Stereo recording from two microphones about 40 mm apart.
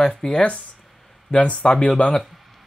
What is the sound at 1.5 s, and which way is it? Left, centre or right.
Speech, left.